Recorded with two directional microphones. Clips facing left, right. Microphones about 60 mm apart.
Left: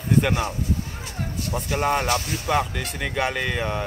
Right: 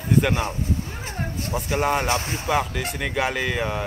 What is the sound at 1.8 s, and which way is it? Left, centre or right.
Speech, centre.